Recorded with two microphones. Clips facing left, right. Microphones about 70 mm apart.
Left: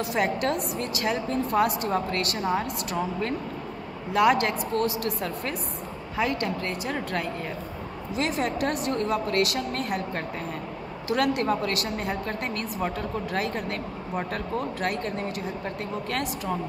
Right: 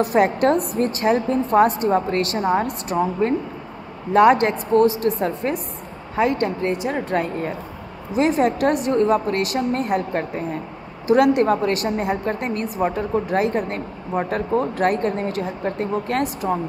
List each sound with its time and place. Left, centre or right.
0.0 s a woman's voice: right
6.6 s a woman's voice: right